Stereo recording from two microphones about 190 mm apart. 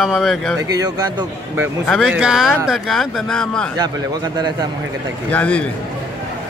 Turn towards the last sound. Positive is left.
turn(degrees=5)  # may be behind; listen again after turning